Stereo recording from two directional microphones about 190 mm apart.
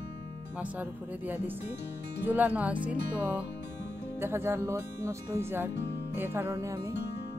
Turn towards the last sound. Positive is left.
turn(degrees=-15)  # may be behind; listen again after turning